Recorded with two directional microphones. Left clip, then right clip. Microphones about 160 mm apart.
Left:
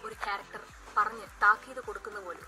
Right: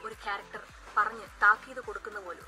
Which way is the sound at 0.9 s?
10° right (ahead or behind).